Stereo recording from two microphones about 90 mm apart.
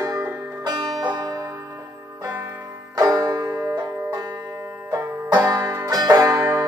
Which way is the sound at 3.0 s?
45° right (ahead or behind).